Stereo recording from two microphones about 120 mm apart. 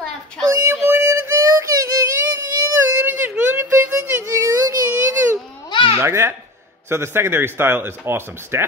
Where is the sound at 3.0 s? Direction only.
15° right (ahead or behind).